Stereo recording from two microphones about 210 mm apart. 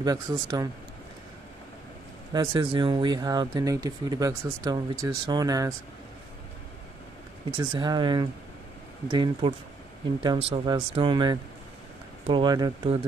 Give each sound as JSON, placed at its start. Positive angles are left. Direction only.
{"t": 0.0, "sound": "speech", "side_deg": -20}
{"t": 2.3, "sound": "speech", "side_deg": -20}
{"t": 7.5, "sound": "speech", "side_deg": -20}